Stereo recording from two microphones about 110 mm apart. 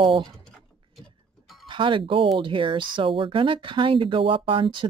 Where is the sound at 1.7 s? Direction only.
50° right (ahead or behind).